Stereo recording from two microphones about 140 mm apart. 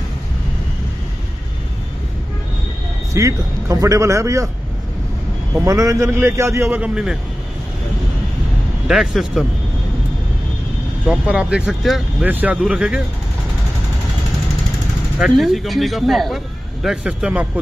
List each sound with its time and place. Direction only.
3.1 s speech: 20° right (ahead or behind)
5.7 s speech: 20° right (ahead or behind)
6.8 s speech: 5° right (ahead or behind)
8.8 s speech: 5° right (ahead or behind)
11.1 s speech: 5° right (ahead or behind)
15.1 s speech: centre (ahead or behind)